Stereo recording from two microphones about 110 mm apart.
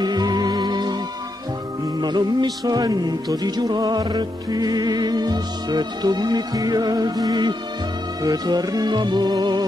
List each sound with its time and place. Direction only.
0.0 s music: 40° right (ahead or behind)
2.0 s music: 40° right (ahead or behind)